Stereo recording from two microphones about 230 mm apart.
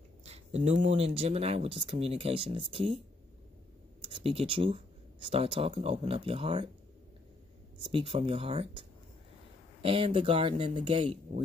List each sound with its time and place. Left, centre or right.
0.2 s a sound: right
0.8 s speech: right
4.1 s speech: right
7.8 s speech: right